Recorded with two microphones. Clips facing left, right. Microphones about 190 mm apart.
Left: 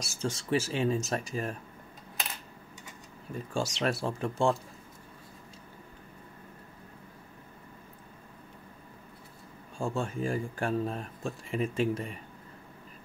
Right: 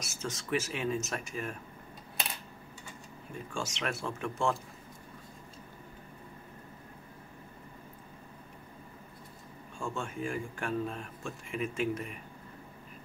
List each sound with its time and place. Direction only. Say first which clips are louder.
0.0 s speech: left 5 dB; 30° left (ahead or behind)
3.5 s speech: left 6 dB; 35° left (ahead or behind)
9.8 s speech: left 5 dB; 35° left (ahead or behind)